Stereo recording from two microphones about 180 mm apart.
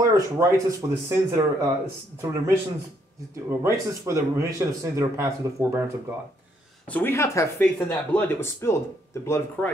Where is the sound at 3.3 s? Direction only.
15° right (ahead or behind).